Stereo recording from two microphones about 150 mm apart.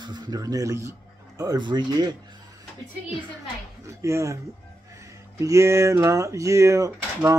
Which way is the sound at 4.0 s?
20° right (ahead or behind).